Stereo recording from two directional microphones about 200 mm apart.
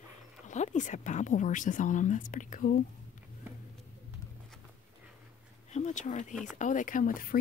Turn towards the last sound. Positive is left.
turn(degrees=45)  # may be behind; listen again after turning